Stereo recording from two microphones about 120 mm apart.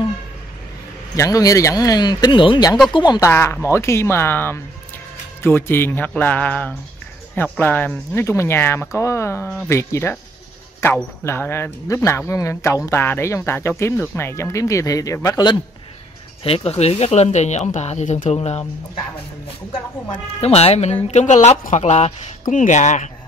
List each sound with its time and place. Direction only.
1.1 s speech: 25° left (ahead or behind)
3.2 s speech: 20° left (ahead or behind)
16.4 s speech: 55° left (ahead or behind)
20.1 s speech: 60° left (ahead or behind)
21.1 s speech: 75° left (ahead or behind)
22.5 s speech: 90° left